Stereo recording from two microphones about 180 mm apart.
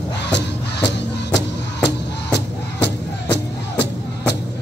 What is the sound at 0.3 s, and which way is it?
Music, 70° left (ahead or behind).